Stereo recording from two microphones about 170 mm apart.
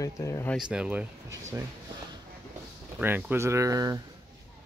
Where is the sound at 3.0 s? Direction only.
10° right (ahead or behind).